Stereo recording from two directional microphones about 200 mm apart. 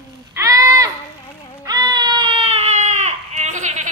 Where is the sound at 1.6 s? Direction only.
20° right (ahead or behind).